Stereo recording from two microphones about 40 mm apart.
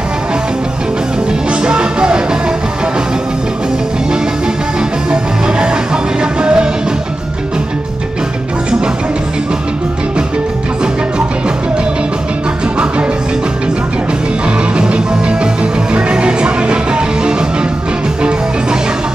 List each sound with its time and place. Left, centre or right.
1.5 s music: right
4.7 s music: right
14.8 s music: right